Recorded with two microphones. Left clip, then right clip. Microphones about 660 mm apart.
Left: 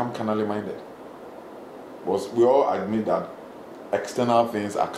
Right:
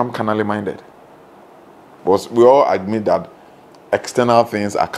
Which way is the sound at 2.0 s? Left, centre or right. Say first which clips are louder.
Right 9 dB; right.